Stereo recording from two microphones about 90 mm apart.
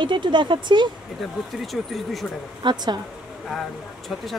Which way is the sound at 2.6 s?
55° right (ahead or behind).